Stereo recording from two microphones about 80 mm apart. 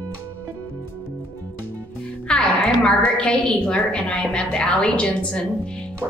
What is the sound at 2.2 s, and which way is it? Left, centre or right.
A woman's voice, centre.